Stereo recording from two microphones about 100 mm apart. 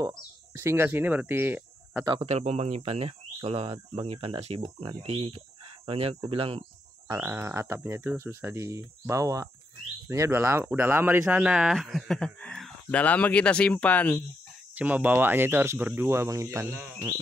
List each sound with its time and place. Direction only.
0.5 s speech: 25° right (ahead or behind)
2.2 s speech: 90° right
5.0 s speech: 70° right (ahead or behind)
5.9 s speech: 90° right; by 6.6 s 75° right (ahead or behind)
7.2 s speech: 20° right (ahead or behind)
11.7 s speech: centre (ahead or behind); by 14.2 s 15° left (ahead or behind)
14.8 s speech: 15° right (ahead or behind)